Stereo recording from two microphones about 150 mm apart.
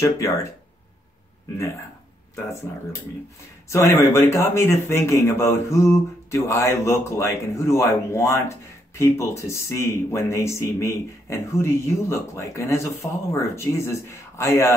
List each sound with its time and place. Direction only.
0.0 s speech: 20° left (ahead or behind)
3.6 s a man's voice: 20° left (ahead or behind)